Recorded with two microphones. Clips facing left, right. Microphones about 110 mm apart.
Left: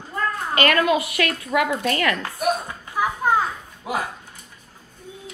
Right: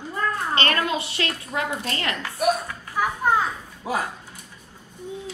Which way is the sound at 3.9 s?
30° right (ahead or behind).